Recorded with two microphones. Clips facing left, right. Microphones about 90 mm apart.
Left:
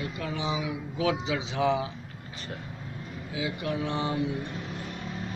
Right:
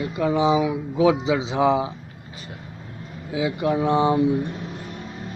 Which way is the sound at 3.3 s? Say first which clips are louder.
Right 9 dB; 25° right (ahead or behind).